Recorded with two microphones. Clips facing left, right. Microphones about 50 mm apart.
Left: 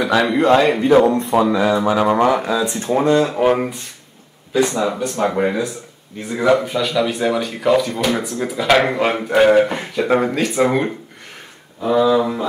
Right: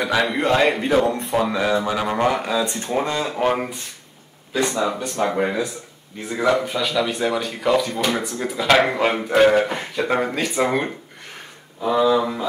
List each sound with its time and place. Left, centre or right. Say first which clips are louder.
0.1 s speech: left 5 dB; centre
1.0 s speech: left 5 dB; left
1.4 s speech: left 3 dB; centre